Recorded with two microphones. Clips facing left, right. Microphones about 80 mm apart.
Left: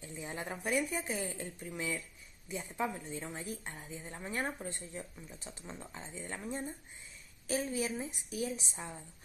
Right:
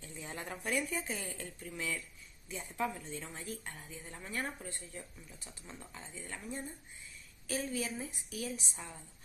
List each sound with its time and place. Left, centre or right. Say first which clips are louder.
0.0 s a woman's voice: left 3 dB; centre